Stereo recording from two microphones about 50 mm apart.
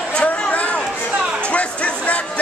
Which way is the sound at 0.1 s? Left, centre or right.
Left.